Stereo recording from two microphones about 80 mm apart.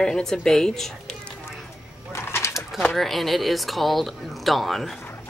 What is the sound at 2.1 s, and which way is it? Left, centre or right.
Bird, left.